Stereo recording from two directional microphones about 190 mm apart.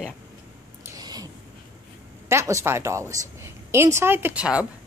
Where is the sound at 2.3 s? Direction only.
15° right (ahead or behind).